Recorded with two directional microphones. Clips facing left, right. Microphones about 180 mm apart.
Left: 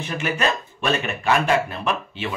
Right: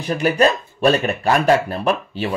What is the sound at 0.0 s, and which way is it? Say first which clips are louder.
Speech: right 7 dB; 40° right (ahead or behind).